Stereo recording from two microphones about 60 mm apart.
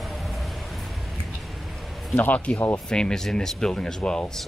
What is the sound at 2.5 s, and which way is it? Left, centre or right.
Speech, left.